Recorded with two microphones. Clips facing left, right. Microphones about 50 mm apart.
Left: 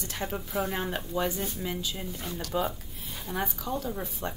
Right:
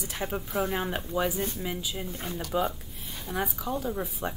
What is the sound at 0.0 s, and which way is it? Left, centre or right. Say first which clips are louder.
Speech: right 1 dB; centre.